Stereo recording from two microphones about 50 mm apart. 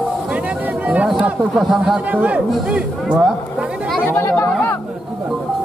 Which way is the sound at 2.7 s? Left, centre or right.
Centre.